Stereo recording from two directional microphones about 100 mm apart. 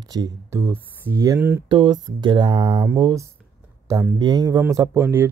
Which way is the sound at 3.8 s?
30° right (ahead or behind).